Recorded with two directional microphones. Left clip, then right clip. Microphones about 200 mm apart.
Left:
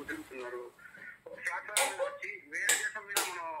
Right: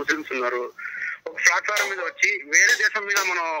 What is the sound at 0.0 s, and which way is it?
Speech, 45° right (ahead or behind).